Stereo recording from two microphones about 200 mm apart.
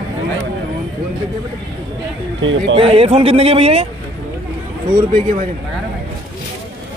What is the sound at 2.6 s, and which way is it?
A man's voice, 30° right (ahead or behind).